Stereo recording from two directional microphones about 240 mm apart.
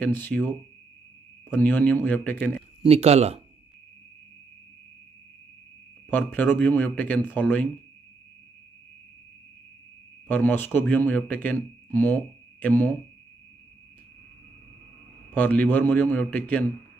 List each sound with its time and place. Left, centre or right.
0.0 s speech: centre
2.8 s speech: right
6.0 s speech: centre
10.2 s speech: centre
15.3 s speech: centre